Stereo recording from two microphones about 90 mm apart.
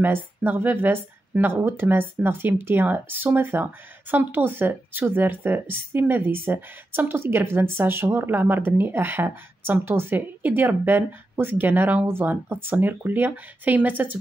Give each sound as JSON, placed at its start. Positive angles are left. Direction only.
{"t": 0.0, "sound": "speech", "side_deg": -20}